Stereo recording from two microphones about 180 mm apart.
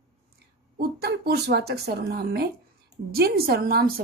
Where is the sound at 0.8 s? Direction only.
60° right (ahead or behind).